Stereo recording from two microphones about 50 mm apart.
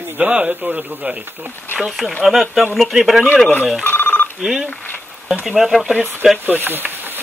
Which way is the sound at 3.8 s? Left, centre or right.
Left.